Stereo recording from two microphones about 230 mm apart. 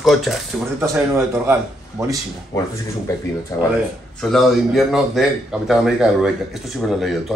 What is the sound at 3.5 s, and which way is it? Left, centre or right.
Speech, centre.